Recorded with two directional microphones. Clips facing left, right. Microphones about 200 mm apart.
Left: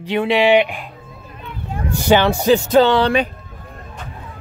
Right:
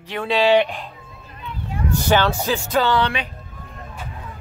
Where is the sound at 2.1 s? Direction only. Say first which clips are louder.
Left 7 dB; 15° left (ahead or behind).